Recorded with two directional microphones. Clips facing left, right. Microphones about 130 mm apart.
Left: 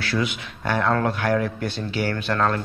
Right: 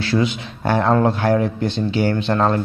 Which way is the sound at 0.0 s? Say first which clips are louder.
Right 6 dB; 25° right (ahead or behind).